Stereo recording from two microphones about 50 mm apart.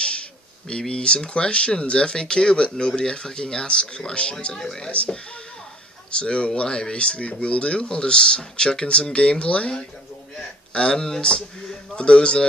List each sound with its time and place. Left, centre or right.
0.0 s speech: centre
4.9 s speech: left